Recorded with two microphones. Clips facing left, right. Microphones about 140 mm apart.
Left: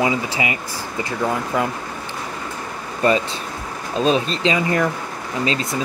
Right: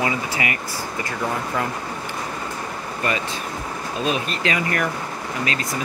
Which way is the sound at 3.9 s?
30° left (ahead or behind).